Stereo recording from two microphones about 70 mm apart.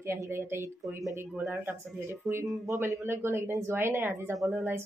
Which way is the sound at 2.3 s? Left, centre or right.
Centre.